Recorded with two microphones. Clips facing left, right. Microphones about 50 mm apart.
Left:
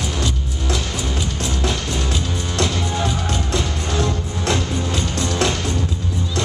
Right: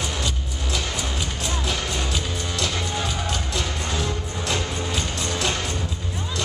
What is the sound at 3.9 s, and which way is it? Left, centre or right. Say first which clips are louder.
Music: left 5 dB; left.